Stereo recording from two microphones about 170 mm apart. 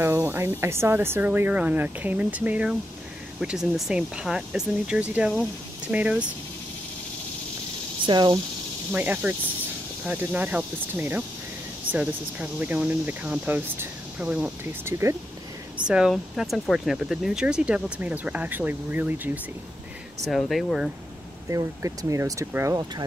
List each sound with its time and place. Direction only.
0.0 s speech: 15° right (ahead or behind)
8.0 s speech: 25° right (ahead or behind)
8.9 s speech: 10° right (ahead or behind)
15.9 s speech: 5° right (ahead or behind)
20.2 s speech: centre (ahead or behind)
21.5 s speech: 20° right (ahead or behind)